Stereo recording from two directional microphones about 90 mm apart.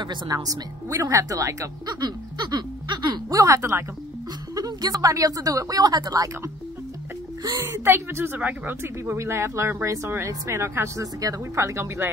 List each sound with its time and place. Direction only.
0.0 s speech: 55° right (ahead or behind)
0.5 s speech: 40° right (ahead or behind)
2.0 s a sound: 55° right (ahead or behind); by 3.8 s 35° right (ahead or behind)
4.6 s speech: 45° right (ahead or behind)
7.5 s a woman's voice: 25° right (ahead or behind)